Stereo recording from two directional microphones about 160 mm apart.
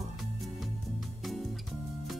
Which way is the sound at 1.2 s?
Centre (ahead or behind).